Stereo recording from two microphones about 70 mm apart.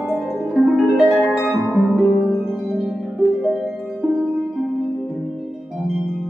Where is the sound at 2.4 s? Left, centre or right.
Centre.